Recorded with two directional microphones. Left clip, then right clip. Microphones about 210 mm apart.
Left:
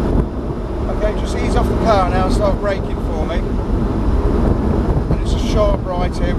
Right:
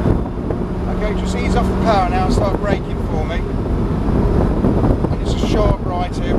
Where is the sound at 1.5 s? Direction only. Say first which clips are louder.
Left 1 dB; 20° right (ahead or behind).